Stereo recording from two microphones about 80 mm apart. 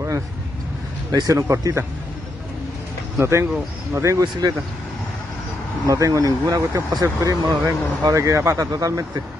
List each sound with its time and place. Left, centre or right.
1.1 s speech: right
3.2 s speech: right
5.9 s speech: right